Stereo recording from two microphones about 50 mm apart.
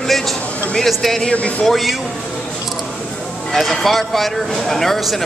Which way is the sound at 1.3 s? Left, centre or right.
Left.